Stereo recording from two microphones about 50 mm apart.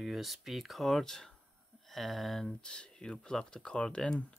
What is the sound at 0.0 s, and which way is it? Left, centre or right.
Speech, centre.